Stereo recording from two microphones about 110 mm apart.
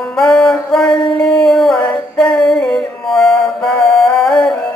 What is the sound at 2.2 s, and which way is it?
Music, 5° left (ahead or behind).